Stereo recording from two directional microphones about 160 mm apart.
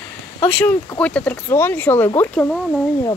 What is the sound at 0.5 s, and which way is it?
Speech, 10° left (ahead or behind).